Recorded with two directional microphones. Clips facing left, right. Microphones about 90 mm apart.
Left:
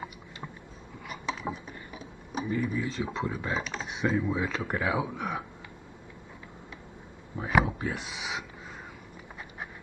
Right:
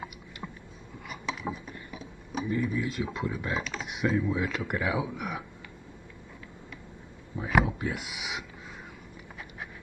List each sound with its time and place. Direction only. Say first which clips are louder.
1.4 s a sound: even; centre (ahead or behind)
2.8 s speech: even; 25° left (ahead or behind)
4.1 s speech: right 1 dB; 20° left (ahead or behind)
7.3 s speech: even; 20° left (ahead or behind)